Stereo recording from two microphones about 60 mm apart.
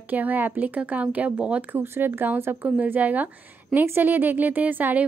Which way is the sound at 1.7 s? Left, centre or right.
Right.